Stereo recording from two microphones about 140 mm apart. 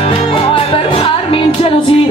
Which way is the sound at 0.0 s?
40° left (ahead or behind).